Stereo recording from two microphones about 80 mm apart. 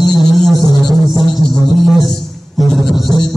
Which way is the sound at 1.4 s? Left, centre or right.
Right.